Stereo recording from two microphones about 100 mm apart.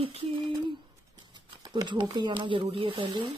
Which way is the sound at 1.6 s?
45° right (ahead or behind).